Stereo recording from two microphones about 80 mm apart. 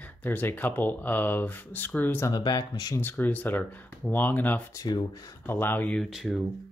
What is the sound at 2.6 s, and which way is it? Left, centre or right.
Speech, left.